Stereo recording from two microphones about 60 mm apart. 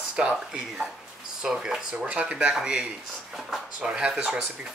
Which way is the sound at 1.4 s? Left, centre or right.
Centre.